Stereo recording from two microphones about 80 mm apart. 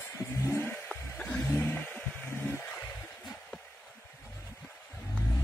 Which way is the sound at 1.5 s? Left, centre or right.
Left.